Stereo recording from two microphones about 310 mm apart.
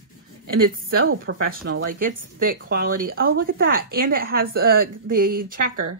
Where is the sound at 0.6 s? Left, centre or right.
Right.